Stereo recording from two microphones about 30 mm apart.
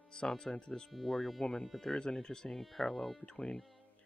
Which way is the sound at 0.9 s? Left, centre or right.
Centre.